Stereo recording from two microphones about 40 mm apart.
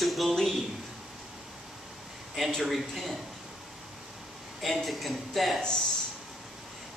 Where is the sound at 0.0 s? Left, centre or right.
Centre.